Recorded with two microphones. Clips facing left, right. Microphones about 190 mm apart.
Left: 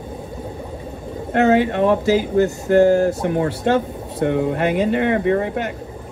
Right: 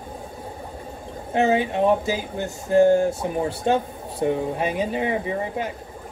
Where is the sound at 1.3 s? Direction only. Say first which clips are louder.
Left 5 dB; 75° left (ahead or behind).